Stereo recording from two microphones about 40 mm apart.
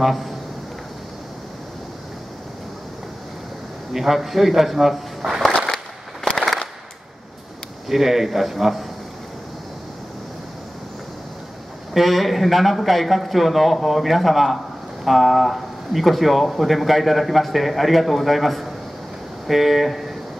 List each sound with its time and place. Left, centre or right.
0.0 s speech: centre
3.9 s speech: centre
6.3 s a sound: centre
7.9 s speech: centre
11.9 s speech: centre